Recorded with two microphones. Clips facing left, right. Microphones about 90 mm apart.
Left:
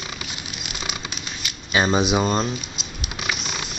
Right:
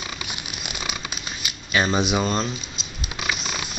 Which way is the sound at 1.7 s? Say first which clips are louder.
Left 2 dB; 15° left (ahead or behind).